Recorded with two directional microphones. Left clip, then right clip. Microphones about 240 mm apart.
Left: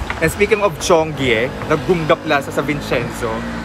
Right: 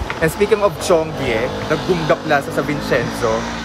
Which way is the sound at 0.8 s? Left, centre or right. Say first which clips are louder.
Left 2 dB; centre.